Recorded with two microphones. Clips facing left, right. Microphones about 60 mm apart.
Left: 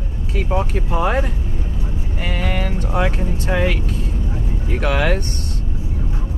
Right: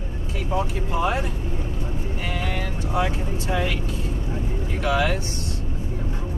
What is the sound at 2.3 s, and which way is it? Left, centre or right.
Speech, left.